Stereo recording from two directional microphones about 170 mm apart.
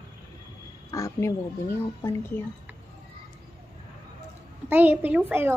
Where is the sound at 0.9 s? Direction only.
20° left (ahead or behind).